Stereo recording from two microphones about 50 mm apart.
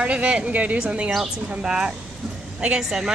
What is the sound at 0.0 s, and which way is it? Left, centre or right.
A woman's voice, right.